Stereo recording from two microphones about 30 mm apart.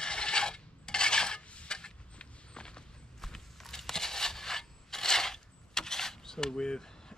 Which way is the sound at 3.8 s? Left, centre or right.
Centre.